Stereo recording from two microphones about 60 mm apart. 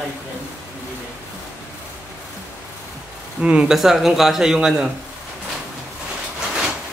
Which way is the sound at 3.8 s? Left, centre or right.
Centre.